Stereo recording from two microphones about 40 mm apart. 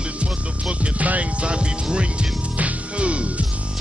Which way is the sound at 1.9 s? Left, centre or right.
Right.